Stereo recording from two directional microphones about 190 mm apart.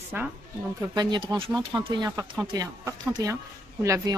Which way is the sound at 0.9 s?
20° right (ahead or behind).